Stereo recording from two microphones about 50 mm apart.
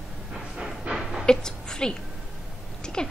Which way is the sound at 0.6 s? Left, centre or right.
Centre.